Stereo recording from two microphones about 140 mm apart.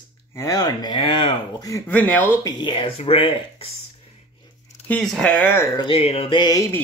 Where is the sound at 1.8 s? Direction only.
10° left (ahead or behind).